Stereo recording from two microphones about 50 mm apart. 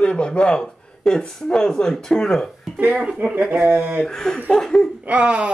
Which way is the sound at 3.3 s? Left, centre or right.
Right.